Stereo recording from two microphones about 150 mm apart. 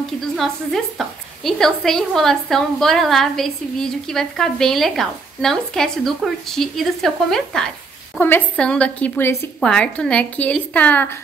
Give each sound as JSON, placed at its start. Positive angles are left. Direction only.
{"t": 0.9, "sound": "a woman's voice", "side_deg": 0}